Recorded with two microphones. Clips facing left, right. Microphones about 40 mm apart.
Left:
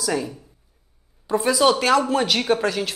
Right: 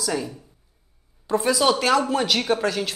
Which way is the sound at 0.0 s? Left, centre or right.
Centre.